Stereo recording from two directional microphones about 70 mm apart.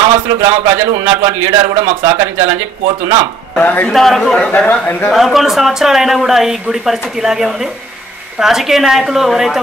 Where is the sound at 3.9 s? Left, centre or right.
Centre.